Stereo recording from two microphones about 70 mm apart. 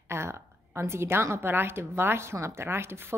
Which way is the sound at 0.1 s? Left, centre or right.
Right.